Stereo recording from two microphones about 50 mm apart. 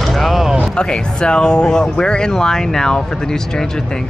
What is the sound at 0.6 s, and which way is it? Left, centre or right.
Speech, centre.